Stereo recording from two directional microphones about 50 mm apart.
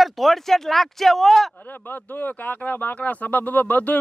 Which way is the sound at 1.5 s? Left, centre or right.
Left.